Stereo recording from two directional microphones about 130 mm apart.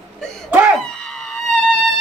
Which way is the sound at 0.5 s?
10° right (ahead or behind).